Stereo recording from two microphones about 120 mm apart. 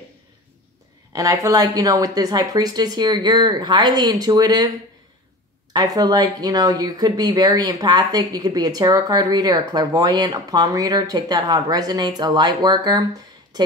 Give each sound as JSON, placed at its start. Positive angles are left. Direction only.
{"t": 1.1, "sound": "speech", "side_deg": -25}